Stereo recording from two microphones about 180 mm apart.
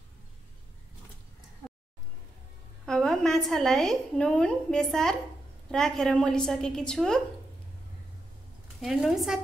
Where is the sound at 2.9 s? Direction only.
Centre (ahead or behind).